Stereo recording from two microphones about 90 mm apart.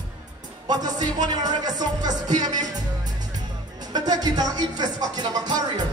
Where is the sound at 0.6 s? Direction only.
50° right (ahead or behind).